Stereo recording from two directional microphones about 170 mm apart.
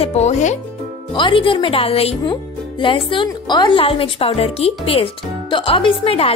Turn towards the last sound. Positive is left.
turn(degrees=35)  # may be behind; listen again after turning